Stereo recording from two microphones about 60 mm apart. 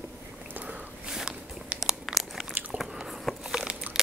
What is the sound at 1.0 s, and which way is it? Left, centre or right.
Walk, centre.